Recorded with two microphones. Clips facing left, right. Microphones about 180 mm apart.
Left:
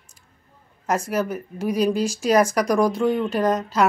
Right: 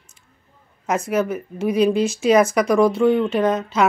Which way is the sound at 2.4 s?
5° right (ahead or behind).